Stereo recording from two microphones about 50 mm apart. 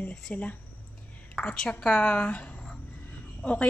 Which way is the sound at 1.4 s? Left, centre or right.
Centre.